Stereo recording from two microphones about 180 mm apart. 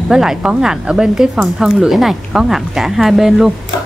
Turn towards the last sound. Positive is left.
turn(degrees=0)  # may be behind; listen again after turning